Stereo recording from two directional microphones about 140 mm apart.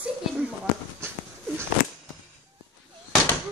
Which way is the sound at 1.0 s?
20° right (ahead or behind).